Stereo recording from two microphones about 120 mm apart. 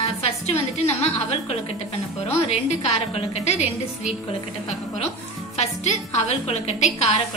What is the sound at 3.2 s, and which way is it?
Speech, 65° left (ahead or behind).